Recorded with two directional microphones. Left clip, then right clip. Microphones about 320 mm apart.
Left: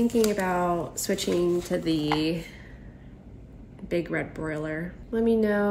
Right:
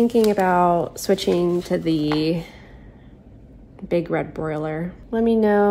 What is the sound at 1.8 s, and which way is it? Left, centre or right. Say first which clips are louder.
Speech: right 4 dB; right.